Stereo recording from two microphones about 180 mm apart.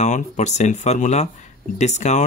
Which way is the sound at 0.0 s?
40° left (ahead or behind).